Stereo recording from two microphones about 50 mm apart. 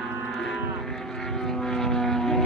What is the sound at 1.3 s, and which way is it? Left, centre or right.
Vehicle, centre.